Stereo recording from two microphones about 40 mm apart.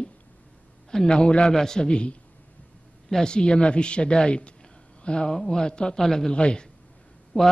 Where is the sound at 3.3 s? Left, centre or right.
Left.